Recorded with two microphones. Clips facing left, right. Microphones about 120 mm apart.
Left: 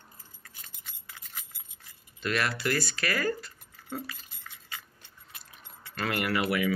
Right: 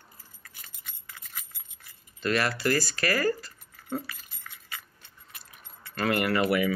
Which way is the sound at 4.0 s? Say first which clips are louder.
Left 2 dB; 15° left (ahead or behind).